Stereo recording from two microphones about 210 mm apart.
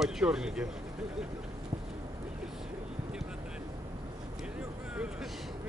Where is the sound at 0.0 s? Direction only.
5° right (ahead or behind).